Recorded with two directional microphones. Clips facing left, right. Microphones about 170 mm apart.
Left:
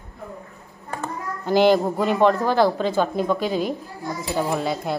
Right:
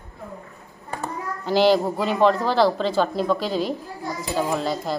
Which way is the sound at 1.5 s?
50° left (ahead or behind).